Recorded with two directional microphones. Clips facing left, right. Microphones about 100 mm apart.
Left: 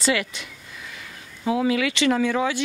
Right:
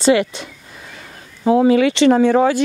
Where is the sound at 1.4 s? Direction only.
35° right (ahead or behind).